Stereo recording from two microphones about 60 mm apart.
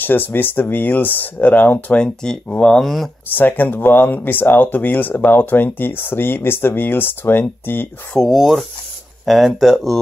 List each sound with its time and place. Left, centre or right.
0.0 s speech: left
2.0 s speech: centre
2.8 s speech: centre
3.3 s speech: left
8.1 s speech: centre